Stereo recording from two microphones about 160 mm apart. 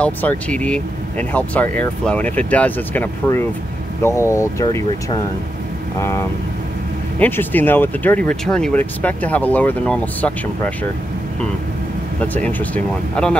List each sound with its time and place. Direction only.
0.0 s speech: 10° left (ahead or behind)
5.9 s speech: 15° left (ahead or behind)
12.2 s speech: 10° left (ahead or behind)